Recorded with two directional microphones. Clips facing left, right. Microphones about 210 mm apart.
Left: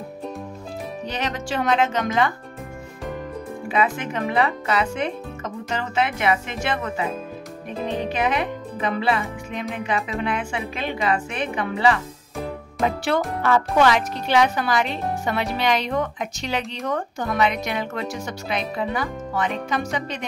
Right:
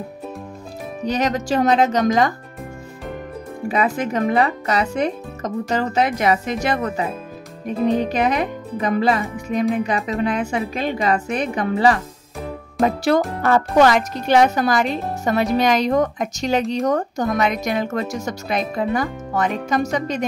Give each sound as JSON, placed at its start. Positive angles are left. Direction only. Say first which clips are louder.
{"t": 1.0, "sound": "speech", "louder": "right 9 dB", "side_deg": -40}
{"t": 3.6, "sound": "speech", "louder": "right 3 dB", "side_deg": -40}
{"t": 8.1, "sound": "speech", "louder": "right 3 dB", "side_deg": -40}